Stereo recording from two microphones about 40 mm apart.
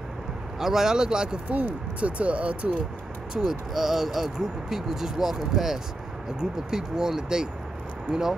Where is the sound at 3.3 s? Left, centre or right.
Centre.